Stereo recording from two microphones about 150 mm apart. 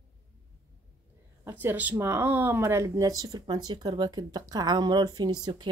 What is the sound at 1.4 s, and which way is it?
Speech, 15° right (ahead or behind).